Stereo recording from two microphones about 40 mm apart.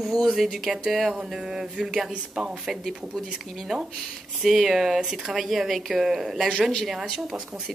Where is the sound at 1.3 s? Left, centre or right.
Centre.